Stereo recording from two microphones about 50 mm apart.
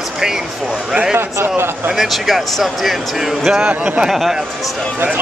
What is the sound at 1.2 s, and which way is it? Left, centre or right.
Speech, right.